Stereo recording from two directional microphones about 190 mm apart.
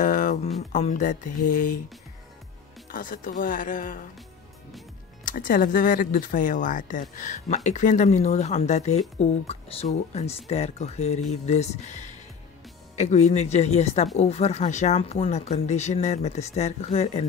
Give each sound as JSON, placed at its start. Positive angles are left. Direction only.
{"t": 0.0, "sound": "a sound", "side_deg": 45}
{"t": 0.6, "sound": "speech", "side_deg": 35}
{"t": 2.9, "sound": "speech", "side_deg": 45}
{"t": 5.2, "sound": "speech", "side_deg": 45}